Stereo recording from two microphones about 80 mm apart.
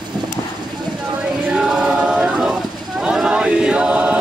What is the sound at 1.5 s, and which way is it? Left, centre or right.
Choir, centre.